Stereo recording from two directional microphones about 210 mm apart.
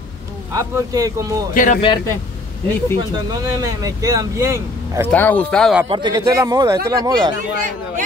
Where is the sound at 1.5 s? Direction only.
40° left (ahead or behind).